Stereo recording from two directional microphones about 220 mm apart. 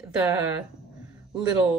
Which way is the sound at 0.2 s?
5° right (ahead or behind).